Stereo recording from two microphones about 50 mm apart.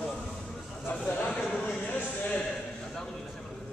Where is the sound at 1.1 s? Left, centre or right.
Left.